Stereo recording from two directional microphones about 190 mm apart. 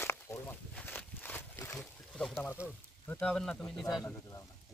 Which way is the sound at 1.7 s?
5° left (ahead or behind).